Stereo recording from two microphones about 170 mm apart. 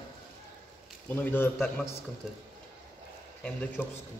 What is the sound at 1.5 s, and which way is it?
Speech, centre (ahead or behind).